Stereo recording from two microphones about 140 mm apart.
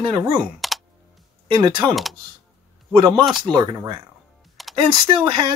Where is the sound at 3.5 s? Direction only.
30° right (ahead or behind).